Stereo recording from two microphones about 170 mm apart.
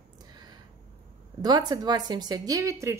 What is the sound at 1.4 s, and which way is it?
A woman's voice, 25° right (ahead or behind).